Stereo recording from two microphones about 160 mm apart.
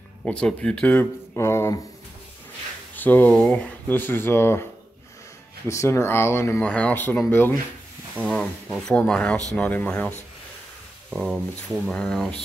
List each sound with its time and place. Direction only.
0.2 s speech: 5° left (ahead or behind)
3.0 s speech: 10° left (ahead or behind)
5.7 s speech: 20° left (ahead or behind)
11.1 s speech: 5° right (ahead or behind)